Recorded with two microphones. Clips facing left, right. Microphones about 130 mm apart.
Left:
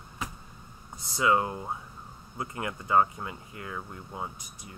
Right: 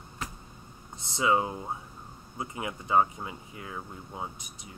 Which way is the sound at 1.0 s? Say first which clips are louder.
Left 1 dB; 20° right (ahead or behind).